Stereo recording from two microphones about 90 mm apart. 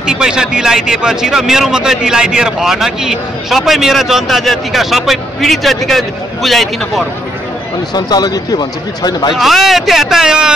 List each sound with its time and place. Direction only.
0.0 s speech: 10° right (ahead or behind)
7.9 s speech: 50° left (ahead or behind)
9.3 s speech: centre (ahead or behind)